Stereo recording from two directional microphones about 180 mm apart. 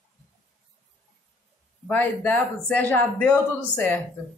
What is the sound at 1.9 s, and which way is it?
A man's voice, 10° left (ahead or behind).